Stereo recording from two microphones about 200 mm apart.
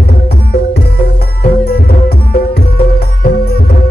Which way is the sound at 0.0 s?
50° left (ahead or behind).